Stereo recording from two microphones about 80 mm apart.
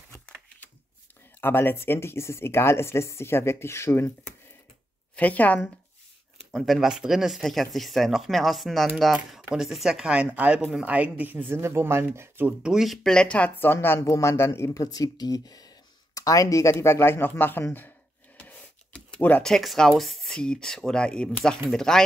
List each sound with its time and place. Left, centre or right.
1.4 s speech: left
5.1 s speech: centre
6.5 s speech: centre; by 12.5 s right
12.6 s speech: centre; by 16.7 s left
16.7 s speech: left
19.4 s speech: centre